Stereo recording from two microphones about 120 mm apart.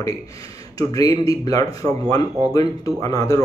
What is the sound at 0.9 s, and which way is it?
Speech, 30° left (ahead or behind).